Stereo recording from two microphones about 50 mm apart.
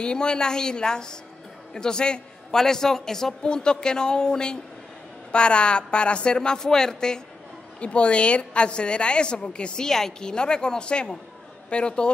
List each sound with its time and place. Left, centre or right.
0.0 s a woman's voice: centre